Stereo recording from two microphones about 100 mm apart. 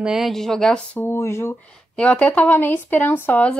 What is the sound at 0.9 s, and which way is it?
Speech, 25° left (ahead or behind).